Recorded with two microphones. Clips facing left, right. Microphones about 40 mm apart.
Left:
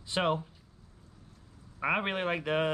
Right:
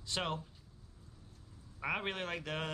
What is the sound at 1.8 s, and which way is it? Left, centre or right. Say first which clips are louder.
Speech: left 7 dB; left.